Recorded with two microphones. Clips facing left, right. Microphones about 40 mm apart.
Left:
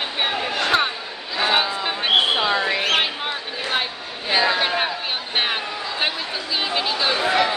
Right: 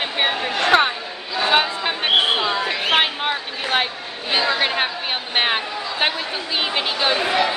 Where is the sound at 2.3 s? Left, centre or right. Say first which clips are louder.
Left 1 dB; centre.